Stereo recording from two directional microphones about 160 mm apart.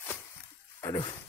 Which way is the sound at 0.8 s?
20° left (ahead or behind).